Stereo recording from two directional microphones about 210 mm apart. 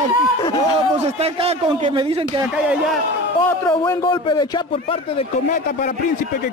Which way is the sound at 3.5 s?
10° left (ahead or behind).